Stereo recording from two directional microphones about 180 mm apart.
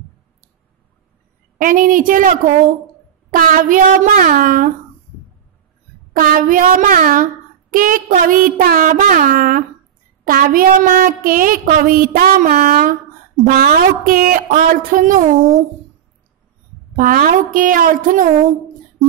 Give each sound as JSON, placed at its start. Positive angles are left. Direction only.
{"t": 1.6, "sound": "a woman's voice", "side_deg": -50}
{"t": 6.1, "sound": "a woman's voice", "side_deg": -50}
{"t": 16.9, "sound": "a woman's voice", "side_deg": -50}